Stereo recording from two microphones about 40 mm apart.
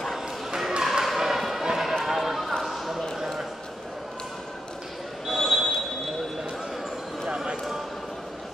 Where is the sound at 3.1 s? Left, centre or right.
Centre.